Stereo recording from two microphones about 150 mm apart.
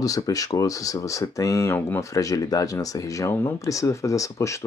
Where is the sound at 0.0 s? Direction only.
25° left (ahead or behind).